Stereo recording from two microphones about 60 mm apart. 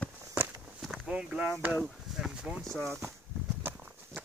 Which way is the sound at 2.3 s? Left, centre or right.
Centre.